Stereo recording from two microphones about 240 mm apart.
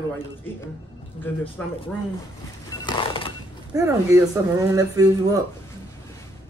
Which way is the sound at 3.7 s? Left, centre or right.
Centre.